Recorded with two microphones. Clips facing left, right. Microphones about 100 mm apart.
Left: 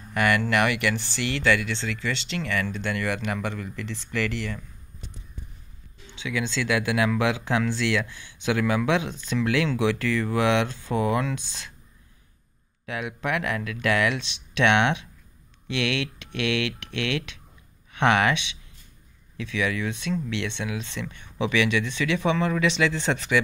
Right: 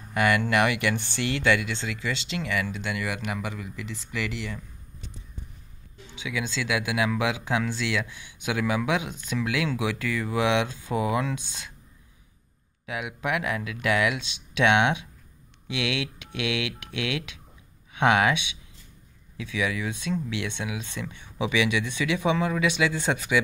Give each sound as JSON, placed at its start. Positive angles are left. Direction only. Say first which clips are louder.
{"t": 0.1, "sound": "speech", "louder": "even", "side_deg": -20}
{"t": 6.1, "sound": "speech", "louder": "left 3 dB", "side_deg": -10}
{"t": 12.8, "sound": "speech", "louder": "left 1 dB", "side_deg": -10}